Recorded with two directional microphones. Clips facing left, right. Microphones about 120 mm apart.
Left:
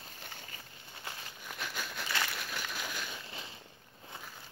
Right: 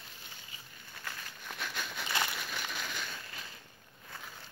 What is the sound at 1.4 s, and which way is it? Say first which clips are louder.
Crumpling: even; 5° left (ahead or behind).